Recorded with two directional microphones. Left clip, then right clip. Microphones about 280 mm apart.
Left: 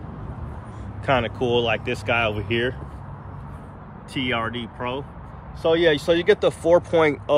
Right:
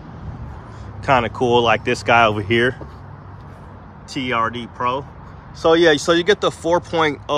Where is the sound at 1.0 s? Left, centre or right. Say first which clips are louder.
Right 5 dB; centre.